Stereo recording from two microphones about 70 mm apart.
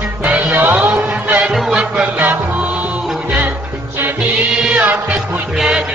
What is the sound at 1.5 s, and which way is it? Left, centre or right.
Music, centre.